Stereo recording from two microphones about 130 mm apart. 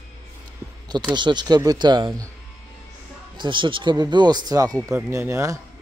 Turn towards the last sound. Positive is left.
turn(degrees=-25)  # may be behind; listen again after turning